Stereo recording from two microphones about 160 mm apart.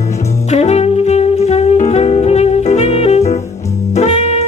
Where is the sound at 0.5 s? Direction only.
45° left (ahead or behind).